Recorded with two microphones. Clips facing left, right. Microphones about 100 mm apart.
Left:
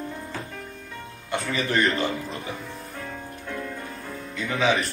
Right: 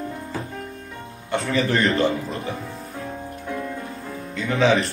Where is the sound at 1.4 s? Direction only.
30° right (ahead or behind).